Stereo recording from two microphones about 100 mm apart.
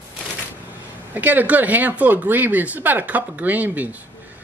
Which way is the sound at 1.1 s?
15° right (ahead or behind).